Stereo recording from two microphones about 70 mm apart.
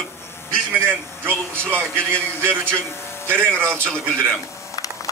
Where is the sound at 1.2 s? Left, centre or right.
Right.